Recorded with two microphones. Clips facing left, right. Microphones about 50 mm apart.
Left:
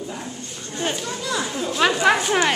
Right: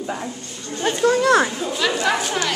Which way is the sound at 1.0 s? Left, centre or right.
Right.